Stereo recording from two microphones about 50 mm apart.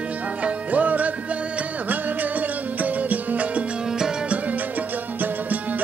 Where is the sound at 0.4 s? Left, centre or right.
Right.